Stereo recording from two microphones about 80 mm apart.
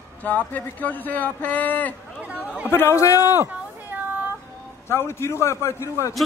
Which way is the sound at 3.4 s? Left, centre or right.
Right.